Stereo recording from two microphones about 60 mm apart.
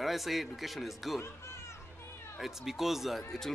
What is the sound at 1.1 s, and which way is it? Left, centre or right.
Music, left.